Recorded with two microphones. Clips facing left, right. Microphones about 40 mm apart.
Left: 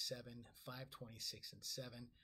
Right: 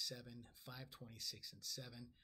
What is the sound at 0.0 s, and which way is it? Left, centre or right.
Speech, centre.